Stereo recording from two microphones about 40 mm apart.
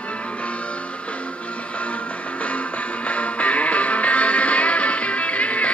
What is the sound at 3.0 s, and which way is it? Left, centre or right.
Music, left.